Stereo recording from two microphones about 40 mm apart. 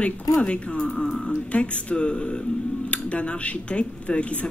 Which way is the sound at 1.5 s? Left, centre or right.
Left.